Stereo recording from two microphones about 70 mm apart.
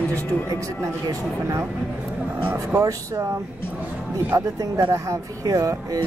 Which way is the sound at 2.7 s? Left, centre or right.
Right.